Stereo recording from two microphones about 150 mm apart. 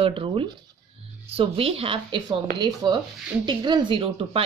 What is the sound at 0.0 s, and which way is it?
Speech, 35° right (ahead or behind).